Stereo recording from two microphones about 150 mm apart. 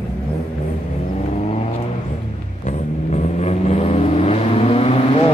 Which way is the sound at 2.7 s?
50° left (ahead or behind).